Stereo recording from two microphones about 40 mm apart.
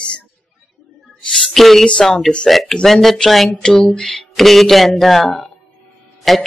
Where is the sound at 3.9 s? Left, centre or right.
Centre.